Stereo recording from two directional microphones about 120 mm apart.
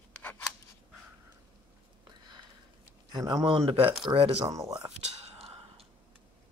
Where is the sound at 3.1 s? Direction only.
30° right (ahead or behind).